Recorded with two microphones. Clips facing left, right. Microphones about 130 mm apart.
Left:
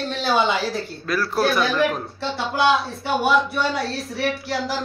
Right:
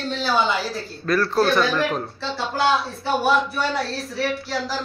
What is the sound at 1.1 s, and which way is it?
Speech, 5° left (ahead or behind).